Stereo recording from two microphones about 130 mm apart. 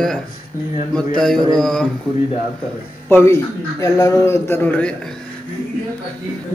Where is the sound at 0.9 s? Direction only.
5° left (ahead or behind).